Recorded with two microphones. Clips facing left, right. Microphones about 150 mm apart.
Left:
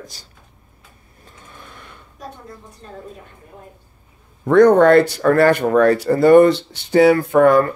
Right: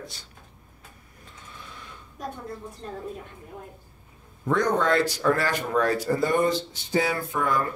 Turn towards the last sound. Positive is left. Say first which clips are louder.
# left 13 dB
turn(degrees=65)  # may be behind; listen again after turning